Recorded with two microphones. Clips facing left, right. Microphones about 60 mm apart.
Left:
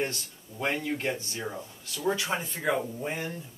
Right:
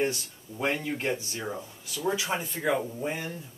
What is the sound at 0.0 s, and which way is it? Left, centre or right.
Speech, centre.